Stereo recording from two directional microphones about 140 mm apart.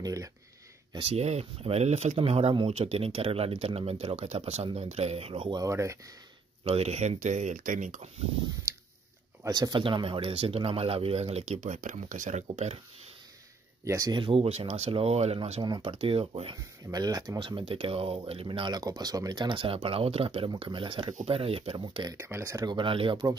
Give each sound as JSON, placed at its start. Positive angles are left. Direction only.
{"t": 0.0, "sound": "speech", "side_deg": -25}
{"t": 0.9, "sound": "speech", "side_deg": -45}
{"t": 5.6, "sound": "speech", "side_deg": -20}
{"t": 6.6, "sound": "speech", "side_deg": -45}
{"t": 9.4, "sound": "speech", "side_deg": -30}
{"t": 13.8, "sound": "speech", "side_deg": -25}
{"t": 15.6, "sound": "speech", "side_deg": -30}
{"t": 15.9, "sound": "speech", "side_deg": -45}
{"t": 16.9, "sound": "speech", "side_deg": -30}
{"t": 22.1, "sound": "speech", "side_deg": -20}
{"t": 22.8, "sound": "speech", "side_deg": -40}